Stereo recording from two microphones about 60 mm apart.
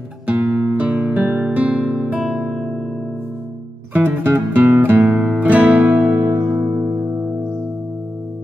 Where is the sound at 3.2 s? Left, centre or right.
Right.